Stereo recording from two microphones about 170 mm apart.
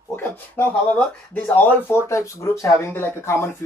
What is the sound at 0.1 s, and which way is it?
Speech, 10° left (ahead or behind).